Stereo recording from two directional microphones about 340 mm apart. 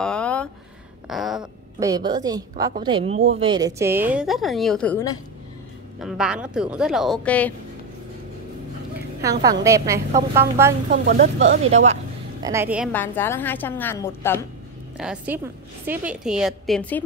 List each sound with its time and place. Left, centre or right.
0.0 s a sound: centre
1.4 s a woman's voice: centre
9.2 s a woman's voice: centre
10.9 s speech: right
12.4 s a woman's voice: centre
15.0 s a woman's voice: centre